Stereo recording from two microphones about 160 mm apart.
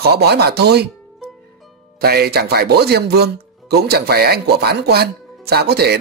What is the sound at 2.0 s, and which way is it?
Speech, 80° right.